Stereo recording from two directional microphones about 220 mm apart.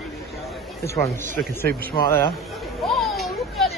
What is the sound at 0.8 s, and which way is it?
Speech, 15° left (ahead or behind).